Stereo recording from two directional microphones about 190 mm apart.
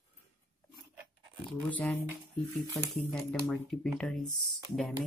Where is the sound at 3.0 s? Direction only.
5° left (ahead or behind).